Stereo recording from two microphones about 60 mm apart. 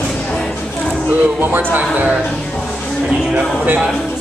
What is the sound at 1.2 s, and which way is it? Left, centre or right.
Speech, right.